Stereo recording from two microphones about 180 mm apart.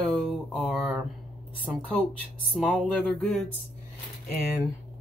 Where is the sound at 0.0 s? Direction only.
5° left (ahead or behind).